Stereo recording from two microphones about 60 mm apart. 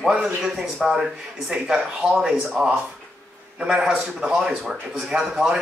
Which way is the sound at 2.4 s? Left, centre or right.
Centre.